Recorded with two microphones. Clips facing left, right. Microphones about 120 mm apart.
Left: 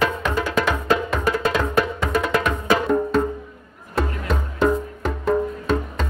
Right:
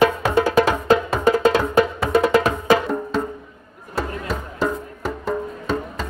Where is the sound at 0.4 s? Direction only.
40° right (ahead or behind).